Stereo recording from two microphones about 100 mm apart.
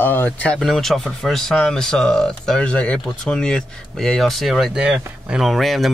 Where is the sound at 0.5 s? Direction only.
Centre (ahead or behind).